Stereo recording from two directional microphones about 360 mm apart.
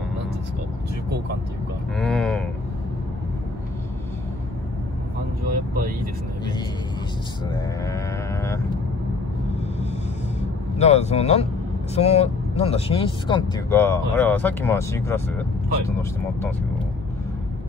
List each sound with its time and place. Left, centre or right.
2.0 s speech: centre
7.5 s speech: centre
10.8 s speech: centre